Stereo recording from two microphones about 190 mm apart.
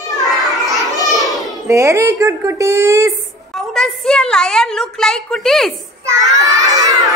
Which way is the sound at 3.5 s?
Centre (ahead or behind).